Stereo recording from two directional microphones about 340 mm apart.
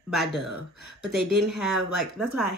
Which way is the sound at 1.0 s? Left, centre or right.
Left.